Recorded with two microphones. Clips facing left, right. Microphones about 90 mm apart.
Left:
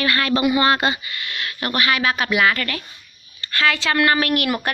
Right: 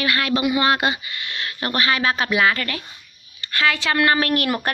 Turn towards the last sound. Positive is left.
turn(degrees=-35)  # may be behind; listen again after turning